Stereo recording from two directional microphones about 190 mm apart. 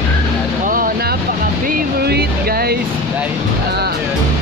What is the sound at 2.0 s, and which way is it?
Music, 55° right (ahead or behind).